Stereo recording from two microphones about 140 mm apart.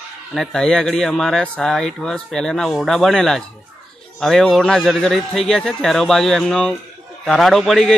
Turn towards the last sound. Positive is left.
turn(degrees=0)  # may be behind; listen again after turning